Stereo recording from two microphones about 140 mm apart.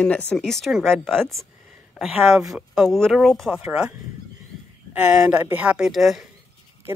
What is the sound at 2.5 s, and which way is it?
Speech, centre (ahead or behind).